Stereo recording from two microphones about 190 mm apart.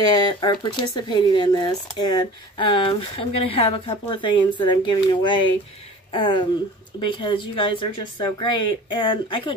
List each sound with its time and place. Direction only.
0.0 s speech: 20° left (ahead or behind)